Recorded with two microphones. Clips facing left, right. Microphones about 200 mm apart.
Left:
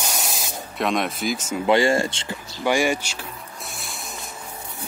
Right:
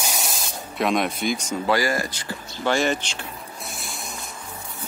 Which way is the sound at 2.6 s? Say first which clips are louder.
Left 1 dB; 10° left (ahead or behind).